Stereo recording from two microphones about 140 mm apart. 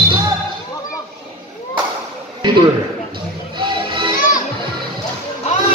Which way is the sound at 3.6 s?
35° right (ahead or behind).